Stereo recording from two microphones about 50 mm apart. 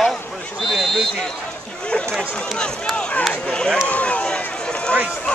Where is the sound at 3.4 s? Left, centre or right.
Centre.